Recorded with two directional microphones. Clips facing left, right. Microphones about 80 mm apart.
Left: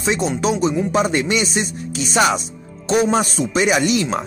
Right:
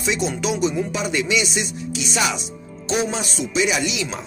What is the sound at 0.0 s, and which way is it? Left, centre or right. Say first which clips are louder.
A man's voice: left 4 dB; left.